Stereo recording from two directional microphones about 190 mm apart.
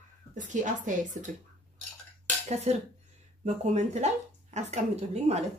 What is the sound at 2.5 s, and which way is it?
A woman's voice, 35° right (ahead or behind).